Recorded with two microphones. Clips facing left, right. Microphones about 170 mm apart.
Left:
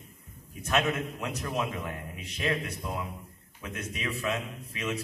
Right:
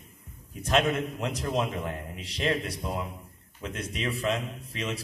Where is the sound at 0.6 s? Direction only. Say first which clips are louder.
Right 3 dB; 30° right (ahead or behind).